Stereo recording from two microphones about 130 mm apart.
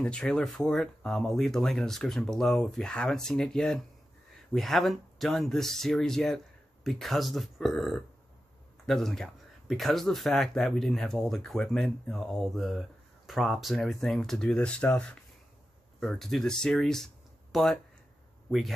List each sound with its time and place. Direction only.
0.0 s speech: 5° left (ahead or behind)